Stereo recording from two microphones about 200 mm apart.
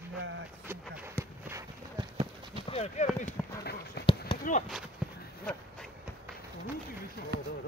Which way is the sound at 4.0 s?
55° left (ahead or behind).